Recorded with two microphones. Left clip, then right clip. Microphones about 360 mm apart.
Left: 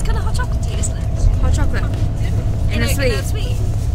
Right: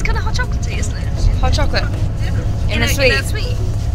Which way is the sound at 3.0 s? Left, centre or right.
Centre.